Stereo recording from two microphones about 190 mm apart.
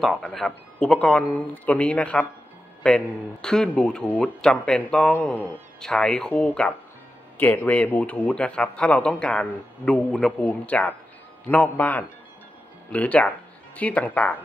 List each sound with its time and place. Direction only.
0.0 s a man's voice: centre (ahead or behind)